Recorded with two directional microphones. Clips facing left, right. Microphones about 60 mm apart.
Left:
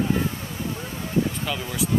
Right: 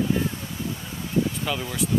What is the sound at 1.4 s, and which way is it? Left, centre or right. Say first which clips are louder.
Speech: even; centre.